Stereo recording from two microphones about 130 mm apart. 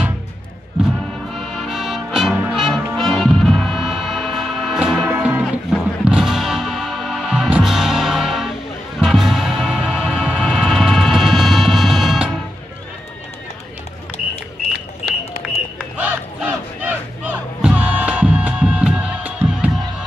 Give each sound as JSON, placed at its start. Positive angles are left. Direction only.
{"t": 1.3, "sound": "music", "side_deg": 0}
{"t": 16.0, "sound": "crowd", "side_deg": -10}